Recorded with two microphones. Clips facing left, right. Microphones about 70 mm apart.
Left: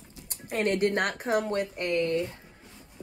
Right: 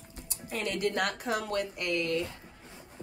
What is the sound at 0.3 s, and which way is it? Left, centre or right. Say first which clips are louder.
Speech: left 7 dB; left.